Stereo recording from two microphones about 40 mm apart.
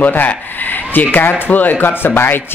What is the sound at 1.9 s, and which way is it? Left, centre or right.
Speech, left.